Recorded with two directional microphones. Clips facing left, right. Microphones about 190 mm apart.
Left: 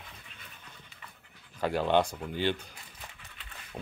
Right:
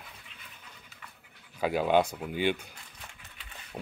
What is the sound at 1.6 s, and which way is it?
Speech, 10° right (ahead or behind).